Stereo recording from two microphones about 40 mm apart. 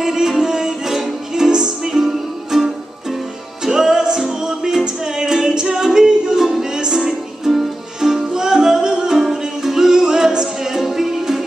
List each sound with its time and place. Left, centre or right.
0.0 s music: centre
6.4 s music: centre